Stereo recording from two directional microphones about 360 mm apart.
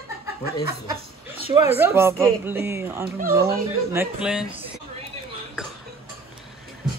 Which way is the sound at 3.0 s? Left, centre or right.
Right.